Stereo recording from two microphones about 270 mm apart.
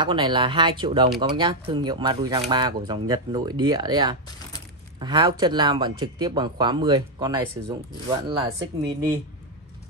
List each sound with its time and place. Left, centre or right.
0.0 s speech: centre